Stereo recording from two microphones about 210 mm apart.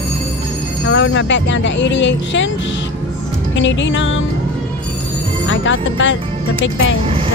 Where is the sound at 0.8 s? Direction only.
55° left (ahead or behind).